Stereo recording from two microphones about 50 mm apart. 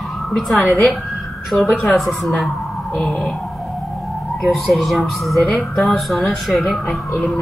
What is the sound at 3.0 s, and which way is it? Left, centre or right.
Speech, left.